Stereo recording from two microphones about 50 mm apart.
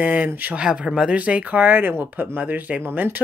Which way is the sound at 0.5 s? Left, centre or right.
Centre.